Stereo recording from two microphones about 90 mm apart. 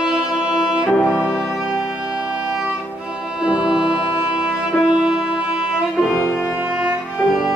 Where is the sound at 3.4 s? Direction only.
10° right (ahead or behind).